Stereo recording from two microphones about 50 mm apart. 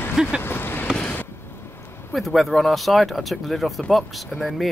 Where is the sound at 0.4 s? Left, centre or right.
Left.